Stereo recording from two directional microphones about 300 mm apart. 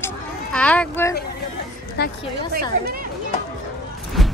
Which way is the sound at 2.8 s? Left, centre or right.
Right.